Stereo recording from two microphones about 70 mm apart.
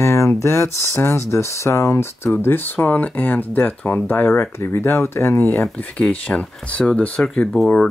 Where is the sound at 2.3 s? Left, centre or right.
Left.